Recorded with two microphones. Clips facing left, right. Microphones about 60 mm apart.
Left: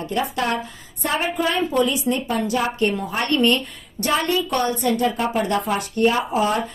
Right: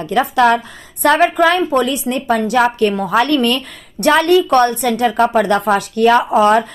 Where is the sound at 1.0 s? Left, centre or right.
Right.